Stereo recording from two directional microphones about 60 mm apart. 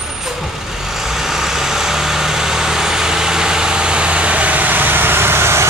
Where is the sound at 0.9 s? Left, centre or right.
Centre.